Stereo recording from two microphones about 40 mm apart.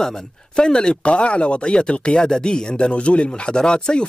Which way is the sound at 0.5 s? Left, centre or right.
Centre.